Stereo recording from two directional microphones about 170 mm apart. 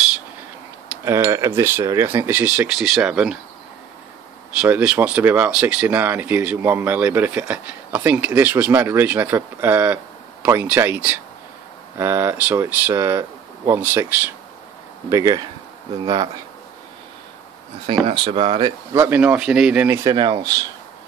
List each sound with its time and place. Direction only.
1.0 s speech: 15° right (ahead or behind)
4.6 s speech: 5° right (ahead or behind); by 16.3 s 25° right (ahead or behind)
17.8 s speech: 30° right (ahead or behind)
18.9 s speech: 10° right (ahead or behind)
20.2 s speech: 25° right (ahead or behind)